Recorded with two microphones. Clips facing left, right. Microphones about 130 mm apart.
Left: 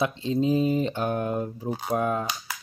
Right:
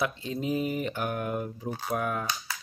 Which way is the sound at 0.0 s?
25° left (ahead or behind).